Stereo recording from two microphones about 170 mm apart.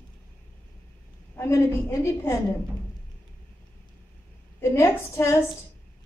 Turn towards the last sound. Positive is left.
turn(degrees=15)  # may be behind; listen again after turning